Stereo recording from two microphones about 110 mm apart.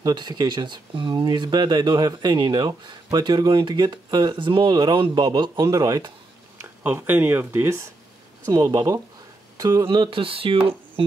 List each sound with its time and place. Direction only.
0.0 s speech: 40° right (ahead or behind)
6.6 s speech: 20° right (ahead or behind)
9.8 s speech: 50° right (ahead or behind)